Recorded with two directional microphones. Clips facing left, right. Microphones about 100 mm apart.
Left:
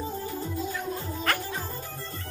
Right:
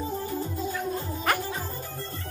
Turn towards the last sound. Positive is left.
turn(degrees=-15)  # may be behind; listen again after turning